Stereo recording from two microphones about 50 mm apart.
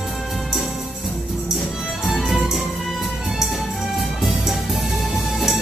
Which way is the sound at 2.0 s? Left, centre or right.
Centre.